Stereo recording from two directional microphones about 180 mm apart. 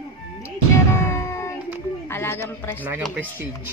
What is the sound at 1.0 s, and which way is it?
Music, 15° left (ahead or behind).